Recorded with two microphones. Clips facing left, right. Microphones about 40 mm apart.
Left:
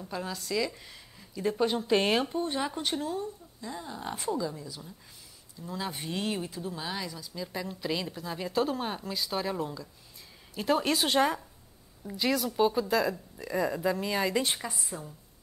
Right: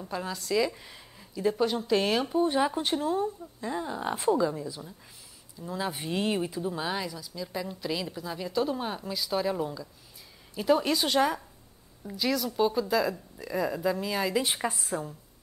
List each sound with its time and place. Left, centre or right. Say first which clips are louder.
0.0 s speech: right 2 dB; centre
1.4 s speech: right 3 dB; centre
1.9 s speech: left 1 dB; centre
2.2 s speech: right 6 dB; centre
3.2 s speech: right 6 dB; right
7.1 s speech: right 1 dB; centre
14.7 s a woman's voice: right 6 dB; right